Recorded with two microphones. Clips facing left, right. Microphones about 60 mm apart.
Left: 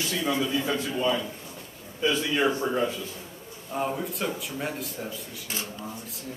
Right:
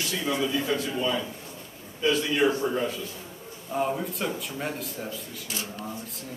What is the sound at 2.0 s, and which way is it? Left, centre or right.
Speech, centre.